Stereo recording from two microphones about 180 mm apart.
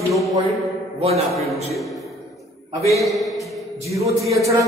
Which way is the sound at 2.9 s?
Centre (ahead or behind).